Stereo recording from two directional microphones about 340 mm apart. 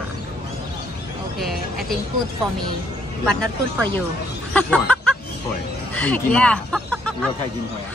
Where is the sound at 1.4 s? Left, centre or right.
Centre.